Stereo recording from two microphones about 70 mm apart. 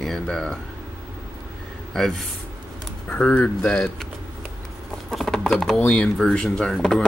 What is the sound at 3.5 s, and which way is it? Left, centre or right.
Speech, centre.